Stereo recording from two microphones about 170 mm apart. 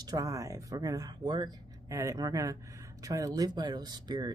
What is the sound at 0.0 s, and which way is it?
Speech, 20° right (ahead or behind).